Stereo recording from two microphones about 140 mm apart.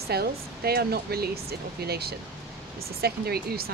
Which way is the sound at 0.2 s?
90° right.